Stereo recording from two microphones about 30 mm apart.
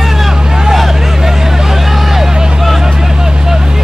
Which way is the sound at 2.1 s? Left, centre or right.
Centre.